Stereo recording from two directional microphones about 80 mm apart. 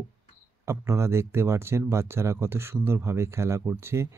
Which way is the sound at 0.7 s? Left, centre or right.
Right.